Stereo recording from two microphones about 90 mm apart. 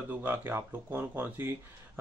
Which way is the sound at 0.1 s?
20° right (ahead or behind).